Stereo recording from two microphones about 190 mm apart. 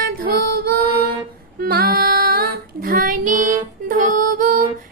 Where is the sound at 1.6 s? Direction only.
55° right (ahead or behind).